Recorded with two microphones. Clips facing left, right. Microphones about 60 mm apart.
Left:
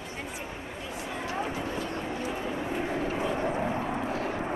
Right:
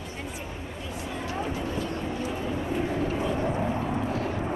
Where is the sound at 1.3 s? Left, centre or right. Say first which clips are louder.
Right 2 dB; left.